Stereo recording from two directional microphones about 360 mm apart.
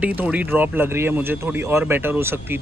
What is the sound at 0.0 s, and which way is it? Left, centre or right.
Speech, centre.